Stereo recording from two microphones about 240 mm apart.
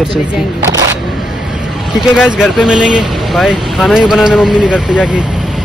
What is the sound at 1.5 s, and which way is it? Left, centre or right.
Speech, centre.